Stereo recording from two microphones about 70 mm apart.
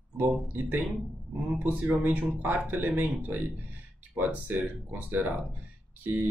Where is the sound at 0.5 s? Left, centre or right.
Right.